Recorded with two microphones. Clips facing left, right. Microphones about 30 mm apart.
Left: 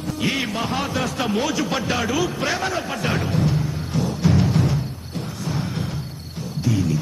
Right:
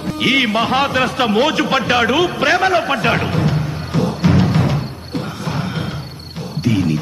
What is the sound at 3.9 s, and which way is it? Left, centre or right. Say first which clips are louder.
Music: right 5 dB; right.